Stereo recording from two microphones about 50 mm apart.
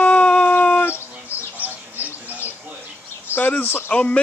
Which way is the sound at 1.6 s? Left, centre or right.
Right.